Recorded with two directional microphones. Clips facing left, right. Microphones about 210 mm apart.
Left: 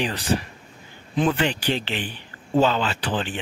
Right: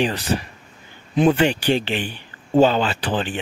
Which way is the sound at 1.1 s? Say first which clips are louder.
Right 5 dB; 15° right (ahead or behind).